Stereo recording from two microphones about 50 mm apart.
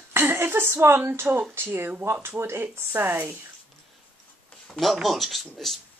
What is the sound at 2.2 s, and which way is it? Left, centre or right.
Speech, right.